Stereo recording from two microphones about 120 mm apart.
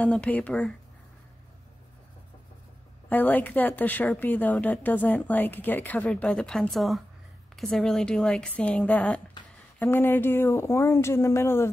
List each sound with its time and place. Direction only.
0.0 s a woman's voice: 10° left (ahead or behind)
3.1 s a woman's voice: 15° left (ahead or behind)